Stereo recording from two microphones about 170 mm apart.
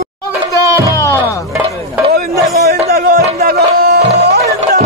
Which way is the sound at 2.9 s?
60° right (ahead or behind).